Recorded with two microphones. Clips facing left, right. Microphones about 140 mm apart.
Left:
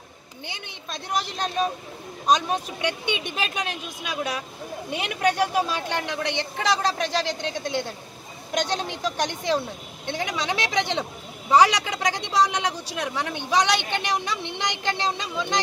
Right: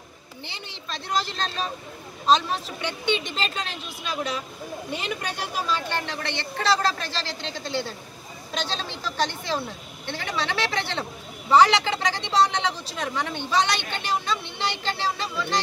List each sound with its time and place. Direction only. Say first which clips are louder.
0.8 s speech: right 1 dB; 15° left (ahead or behind)
5.7 s speech: even; 15° left (ahead or behind)